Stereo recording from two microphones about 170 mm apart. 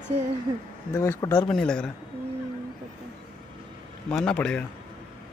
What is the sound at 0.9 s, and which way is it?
Speech, 20° left (ahead or behind).